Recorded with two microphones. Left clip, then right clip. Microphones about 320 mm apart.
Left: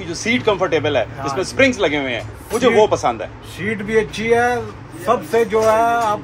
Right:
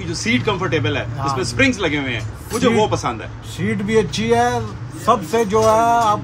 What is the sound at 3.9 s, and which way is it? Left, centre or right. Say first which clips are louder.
A man's voice: even; centre.